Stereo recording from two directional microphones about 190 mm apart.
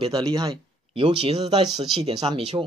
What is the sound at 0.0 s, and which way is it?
Speech, 25° right (ahead or behind).